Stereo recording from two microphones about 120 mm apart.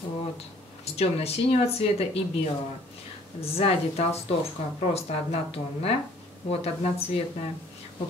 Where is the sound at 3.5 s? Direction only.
55° left (ahead or behind).